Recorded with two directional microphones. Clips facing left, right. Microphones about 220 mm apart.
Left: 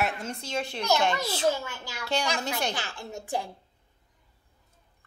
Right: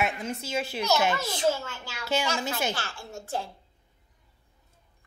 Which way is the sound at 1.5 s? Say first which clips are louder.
Even; 15° left (ahead or behind).